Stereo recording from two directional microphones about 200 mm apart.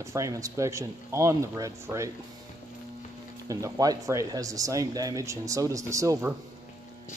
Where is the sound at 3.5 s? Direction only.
15° right (ahead or behind).